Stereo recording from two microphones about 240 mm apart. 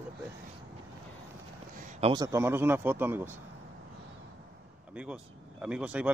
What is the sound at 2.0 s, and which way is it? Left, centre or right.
Speech, centre.